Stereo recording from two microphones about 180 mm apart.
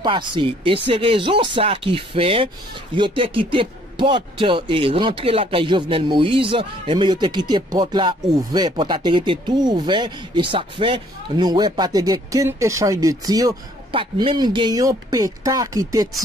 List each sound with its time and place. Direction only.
0.0 s speech: 25° right (ahead or behind)